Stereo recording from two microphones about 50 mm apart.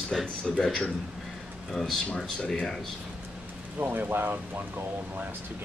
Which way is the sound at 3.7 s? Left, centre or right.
Right.